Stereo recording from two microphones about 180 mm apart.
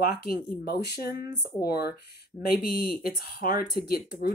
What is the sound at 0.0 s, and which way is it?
Speech, 55° left (ahead or behind).